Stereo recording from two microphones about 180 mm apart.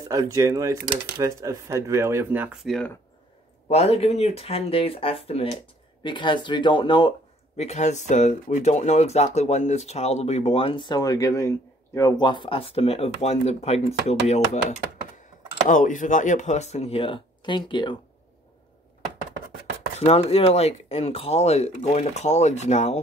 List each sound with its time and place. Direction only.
0.1 s speech: 20° right (ahead or behind); by 2.9 s centre (ahead or behind)
3.6 s speech: 35° left (ahead or behind)
15.7 s speech: 45° left (ahead or behind); by 17.9 s 25° left (ahead or behind)
20.0 s speech: 35° left (ahead or behind)